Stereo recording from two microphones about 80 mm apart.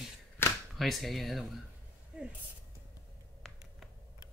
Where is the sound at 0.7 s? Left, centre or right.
Centre.